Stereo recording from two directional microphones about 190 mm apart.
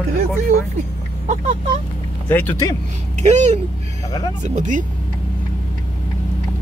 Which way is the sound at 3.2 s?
40° right (ahead or behind).